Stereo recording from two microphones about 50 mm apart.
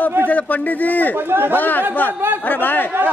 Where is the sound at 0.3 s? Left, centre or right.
Left.